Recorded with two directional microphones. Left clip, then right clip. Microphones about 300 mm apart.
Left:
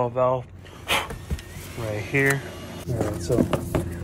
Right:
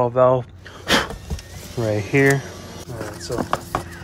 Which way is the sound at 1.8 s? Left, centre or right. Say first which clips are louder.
Right 5 dB; right.